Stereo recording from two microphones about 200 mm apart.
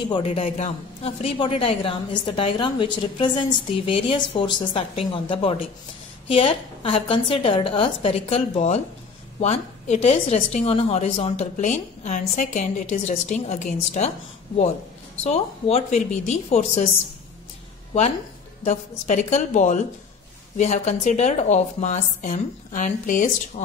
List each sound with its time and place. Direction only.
0.1 s a man's voice: 30° left (ahead or behind)
15.2 s a woman's voice: 30° left (ahead or behind)
18.6 s a woman's voice: 40° left (ahead or behind)